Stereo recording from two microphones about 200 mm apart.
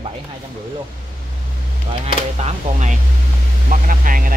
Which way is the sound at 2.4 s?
35° right (ahead or behind).